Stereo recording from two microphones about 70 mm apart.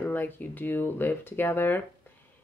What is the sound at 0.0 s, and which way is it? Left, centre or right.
A woman's voice, left.